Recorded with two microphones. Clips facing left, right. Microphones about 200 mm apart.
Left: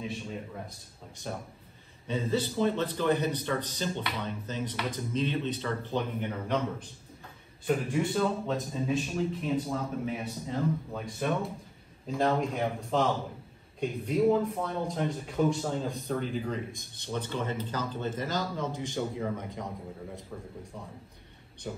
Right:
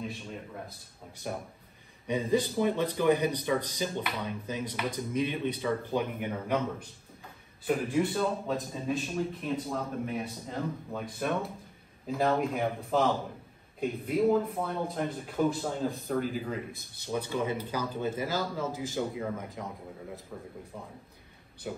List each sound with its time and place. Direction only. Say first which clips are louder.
0.0 s speech: left 2 dB; centre (ahead or behind)
21.7 s speech: right 1 dB; 5° right (ahead or behind)